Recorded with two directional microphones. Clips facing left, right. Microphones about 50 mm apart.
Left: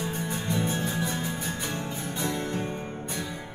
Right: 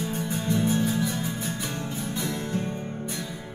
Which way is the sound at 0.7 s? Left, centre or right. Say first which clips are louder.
Right 4 dB; centre.